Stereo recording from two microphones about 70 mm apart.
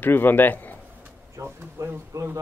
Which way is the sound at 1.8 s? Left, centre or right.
Right.